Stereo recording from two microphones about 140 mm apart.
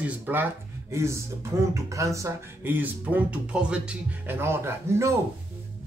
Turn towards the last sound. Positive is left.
turn(degrees=-20)  # may be behind; listen again after turning